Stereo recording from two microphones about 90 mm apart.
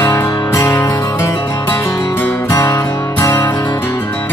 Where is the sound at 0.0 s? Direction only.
35° left (ahead or behind).